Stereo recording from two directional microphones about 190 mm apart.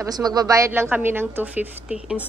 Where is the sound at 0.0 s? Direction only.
20° right (ahead or behind).